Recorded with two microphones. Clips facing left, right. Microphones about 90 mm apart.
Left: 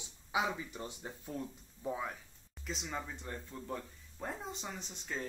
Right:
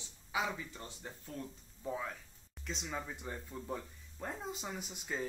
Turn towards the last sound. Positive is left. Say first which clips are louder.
# right 2 dB
turn(degrees=-10)  # may be behind; listen again after turning